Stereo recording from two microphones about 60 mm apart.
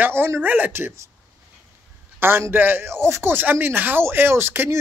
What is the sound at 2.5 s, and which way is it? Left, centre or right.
Speech, right.